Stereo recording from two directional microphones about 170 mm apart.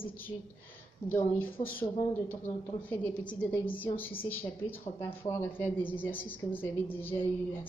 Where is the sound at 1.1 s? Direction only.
10° left (ahead or behind).